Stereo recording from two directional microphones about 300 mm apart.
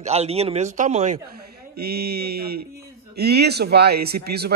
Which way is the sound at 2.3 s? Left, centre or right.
Right.